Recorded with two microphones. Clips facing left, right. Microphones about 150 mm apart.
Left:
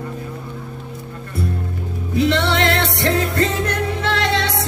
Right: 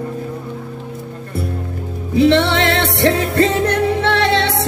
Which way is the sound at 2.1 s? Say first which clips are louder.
Right 5 dB; 25° right (ahead or behind).